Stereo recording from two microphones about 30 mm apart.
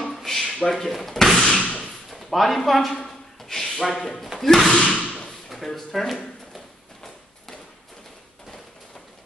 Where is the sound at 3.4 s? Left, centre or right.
Centre.